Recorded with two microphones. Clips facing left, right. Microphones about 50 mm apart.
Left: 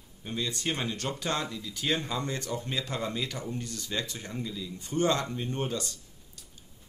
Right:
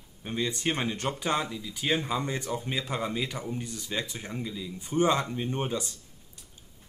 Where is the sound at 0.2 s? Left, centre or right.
Right.